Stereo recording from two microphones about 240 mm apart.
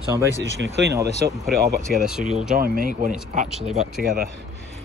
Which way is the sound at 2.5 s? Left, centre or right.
Right.